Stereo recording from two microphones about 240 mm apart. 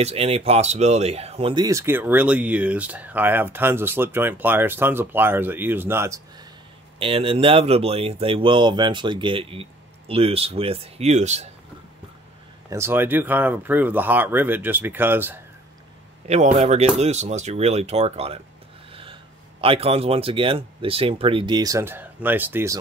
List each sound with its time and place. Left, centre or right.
0.0 s speech: right
7.0 s speech: right
12.6 s speech: centre
16.3 s speech: right
19.6 s speech: right